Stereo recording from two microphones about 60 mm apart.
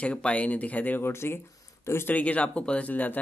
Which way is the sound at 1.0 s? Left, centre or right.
Left.